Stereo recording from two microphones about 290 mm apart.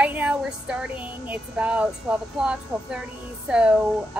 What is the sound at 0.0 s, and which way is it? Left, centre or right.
Music, centre.